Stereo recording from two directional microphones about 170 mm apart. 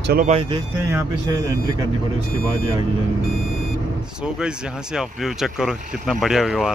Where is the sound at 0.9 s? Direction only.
15° right (ahead or behind).